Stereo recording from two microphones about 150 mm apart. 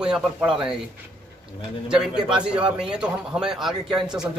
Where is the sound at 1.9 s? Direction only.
5° right (ahead or behind).